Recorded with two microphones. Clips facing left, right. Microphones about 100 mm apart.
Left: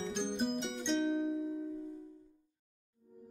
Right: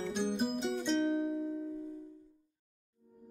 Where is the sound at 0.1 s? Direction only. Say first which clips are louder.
Right 2 dB; 5° right (ahead or behind).